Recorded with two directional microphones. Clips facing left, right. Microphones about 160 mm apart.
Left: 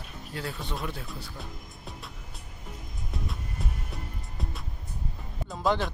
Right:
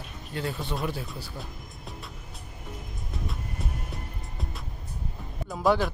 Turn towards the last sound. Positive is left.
turn(degrees=-5)  # may be behind; listen again after turning